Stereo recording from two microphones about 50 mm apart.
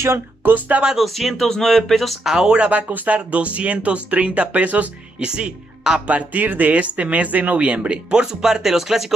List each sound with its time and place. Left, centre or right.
0.4 s speech: right
0.9 s speech: centre
2.3 s speech: centre
5.2 s speech: centre
5.9 s speech: right; by 9.1 s centre